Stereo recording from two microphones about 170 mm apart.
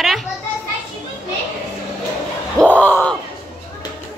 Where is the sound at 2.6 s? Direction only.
10° left (ahead or behind).